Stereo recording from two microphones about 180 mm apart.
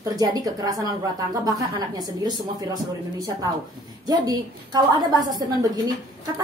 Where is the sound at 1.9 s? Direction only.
20° right (ahead or behind).